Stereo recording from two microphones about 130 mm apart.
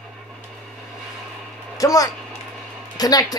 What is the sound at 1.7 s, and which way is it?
A woman's voice, 25° left (ahead or behind).